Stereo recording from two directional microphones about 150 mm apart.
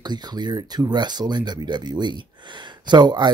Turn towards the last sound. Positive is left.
turn(degrees=-30)  # may be behind; listen again after turning